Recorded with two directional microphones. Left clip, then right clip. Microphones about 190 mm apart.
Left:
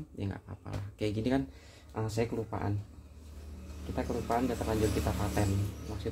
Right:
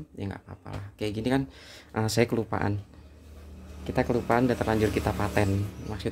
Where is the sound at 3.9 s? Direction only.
55° right (ahead or behind).